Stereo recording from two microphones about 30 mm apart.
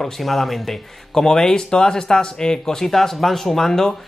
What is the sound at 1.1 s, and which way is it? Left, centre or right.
Speech, centre.